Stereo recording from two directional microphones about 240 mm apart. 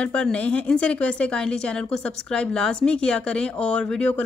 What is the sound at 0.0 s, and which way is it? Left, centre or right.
Speech, centre.